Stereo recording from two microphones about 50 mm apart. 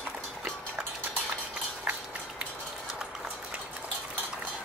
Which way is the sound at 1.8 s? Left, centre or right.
Right.